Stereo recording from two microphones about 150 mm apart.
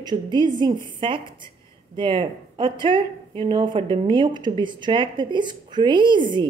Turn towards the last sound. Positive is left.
turn(degrees=-30)  # may be behind; listen again after turning